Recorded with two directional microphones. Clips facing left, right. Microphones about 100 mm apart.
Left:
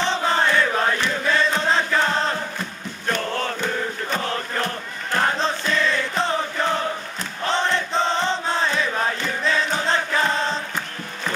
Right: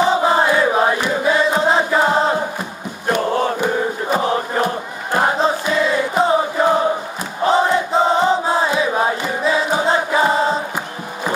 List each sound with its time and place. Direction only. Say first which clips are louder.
0.0 s chant: right 6 dB; 10° right (ahead or behind)